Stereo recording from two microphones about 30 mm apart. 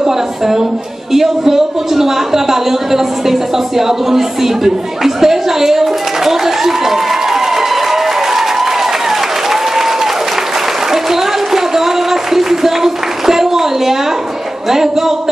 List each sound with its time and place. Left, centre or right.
0.0 s a woman's voice: centre
10.9 s a sound: centre
14.7 s a woman's voice: centre